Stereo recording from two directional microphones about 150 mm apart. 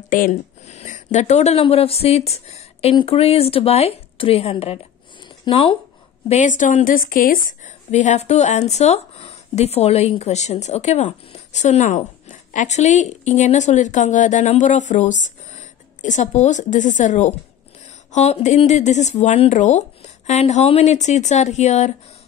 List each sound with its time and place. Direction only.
0.1 s a woman's voice: 55° left (ahead or behind); by 5.8 s 35° left (ahead or behind)
6.2 s a woman's voice: 50° left (ahead or behind)